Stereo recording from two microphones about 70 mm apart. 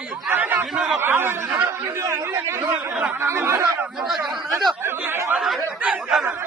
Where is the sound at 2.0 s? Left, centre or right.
Right.